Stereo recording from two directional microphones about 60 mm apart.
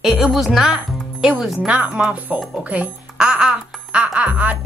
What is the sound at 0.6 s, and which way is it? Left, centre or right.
Speech, centre.